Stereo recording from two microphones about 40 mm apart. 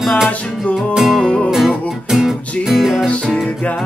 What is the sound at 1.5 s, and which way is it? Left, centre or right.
Music, centre.